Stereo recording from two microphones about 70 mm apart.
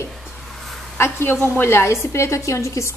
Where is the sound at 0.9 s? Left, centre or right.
Left.